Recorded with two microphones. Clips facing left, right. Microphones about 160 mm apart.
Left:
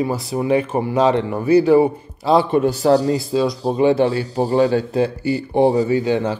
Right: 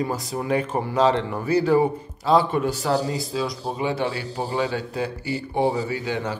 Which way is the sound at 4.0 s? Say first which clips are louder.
Left 9 dB; 35° left (ahead or behind).